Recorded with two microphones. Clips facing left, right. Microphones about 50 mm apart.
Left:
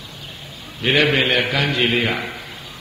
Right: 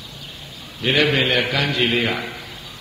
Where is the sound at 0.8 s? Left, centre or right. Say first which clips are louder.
Left 1 dB; centre.